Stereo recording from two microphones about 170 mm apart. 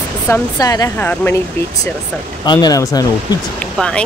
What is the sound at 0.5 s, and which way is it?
Speech, 25° left (ahead or behind).